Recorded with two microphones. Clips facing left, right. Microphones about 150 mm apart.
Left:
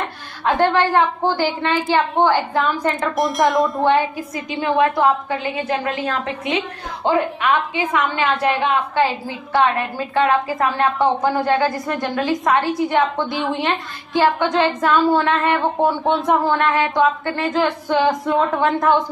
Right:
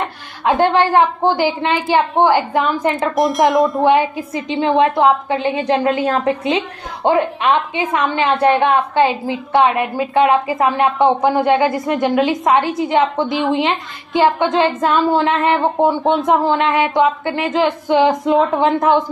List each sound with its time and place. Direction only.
0.4 s a woman's voice: 15° right (ahead or behind)
3.2 s speech: centre (ahead or behind)
3.8 s a woman's voice: 20° right (ahead or behind)